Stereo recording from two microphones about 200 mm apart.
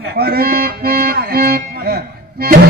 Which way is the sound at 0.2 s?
50° right (ahead or behind).